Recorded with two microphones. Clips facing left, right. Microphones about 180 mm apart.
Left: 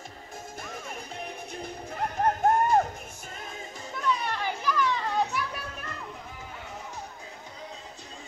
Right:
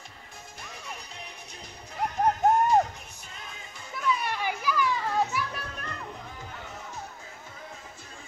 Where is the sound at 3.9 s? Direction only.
5° right (ahead or behind).